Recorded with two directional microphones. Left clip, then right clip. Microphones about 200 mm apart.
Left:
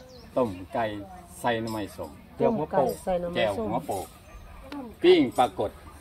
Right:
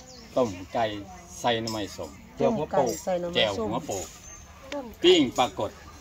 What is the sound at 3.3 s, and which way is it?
Speech, 10° right (ahead or behind).